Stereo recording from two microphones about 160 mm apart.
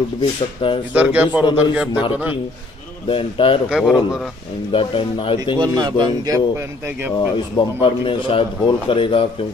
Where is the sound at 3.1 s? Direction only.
35° left (ahead or behind).